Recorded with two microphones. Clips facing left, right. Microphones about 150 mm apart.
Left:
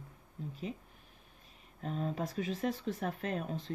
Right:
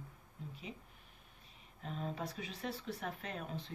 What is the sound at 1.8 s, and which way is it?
Speech, 45° left (ahead or behind).